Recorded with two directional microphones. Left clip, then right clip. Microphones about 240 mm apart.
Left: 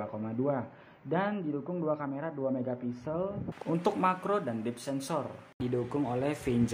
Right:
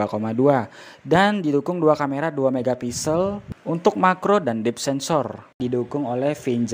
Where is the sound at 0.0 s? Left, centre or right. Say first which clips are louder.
Right 14 dB; right.